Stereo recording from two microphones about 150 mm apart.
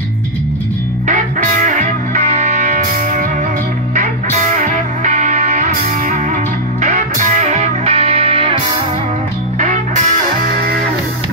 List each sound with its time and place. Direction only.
1.0 s music: 60° right (ahead or behind)
6.8 s music: 50° right (ahead or behind)